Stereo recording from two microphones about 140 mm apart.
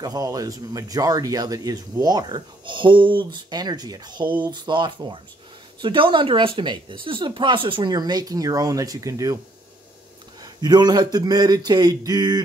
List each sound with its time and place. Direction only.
0.0 s speech: 25° right (ahead or behind)
10.4 s speech: 30° right (ahead or behind)